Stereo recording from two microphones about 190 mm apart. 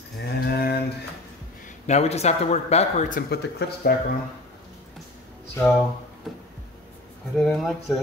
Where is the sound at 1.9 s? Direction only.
35° left (ahead or behind); by 3.9 s 55° left (ahead or behind).